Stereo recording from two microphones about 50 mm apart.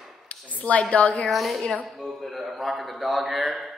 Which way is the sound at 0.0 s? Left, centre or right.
Centre.